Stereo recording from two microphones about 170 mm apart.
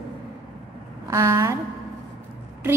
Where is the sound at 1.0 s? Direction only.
15° right (ahead or behind).